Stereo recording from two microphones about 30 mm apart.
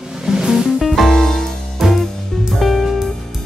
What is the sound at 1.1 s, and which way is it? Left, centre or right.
Music, centre.